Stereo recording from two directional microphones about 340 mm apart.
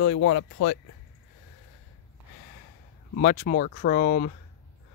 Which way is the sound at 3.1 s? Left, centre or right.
Left.